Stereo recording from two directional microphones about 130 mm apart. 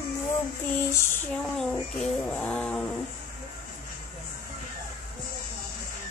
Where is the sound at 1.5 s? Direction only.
5° left (ahead or behind).